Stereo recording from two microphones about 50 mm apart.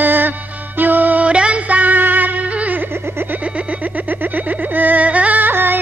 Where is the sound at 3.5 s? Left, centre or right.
Right.